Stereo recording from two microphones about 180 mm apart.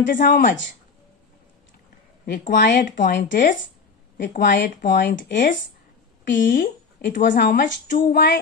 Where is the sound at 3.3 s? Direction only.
50° left (ahead or behind).